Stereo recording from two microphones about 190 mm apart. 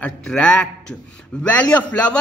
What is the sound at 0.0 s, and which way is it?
A man's voice, 5° left (ahead or behind).